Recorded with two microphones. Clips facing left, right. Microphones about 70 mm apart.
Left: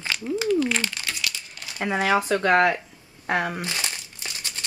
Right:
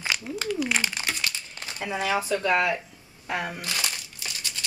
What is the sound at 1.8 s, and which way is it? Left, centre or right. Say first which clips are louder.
Speech: left 5 dB; left.